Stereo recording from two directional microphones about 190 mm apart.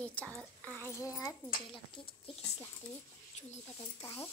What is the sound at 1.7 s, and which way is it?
Speech, 25° left (ahead or behind).